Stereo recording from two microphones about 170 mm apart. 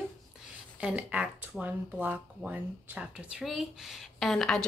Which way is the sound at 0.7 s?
10° right (ahead or behind).